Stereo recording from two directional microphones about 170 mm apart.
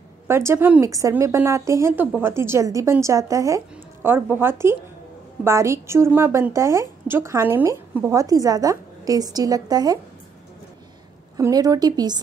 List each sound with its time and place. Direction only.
0.3 s a woman's voice: 15° right (ahead or behind)
11.3 s speech: 20° right (ahead or behind)